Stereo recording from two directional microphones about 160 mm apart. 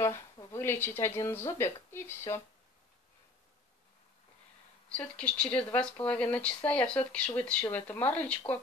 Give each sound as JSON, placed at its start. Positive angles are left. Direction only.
{"t": 0.0, "sound": "speech", "side_deg": 20}
{"t": 4.9, "sound": "speech", "side_deg": 5}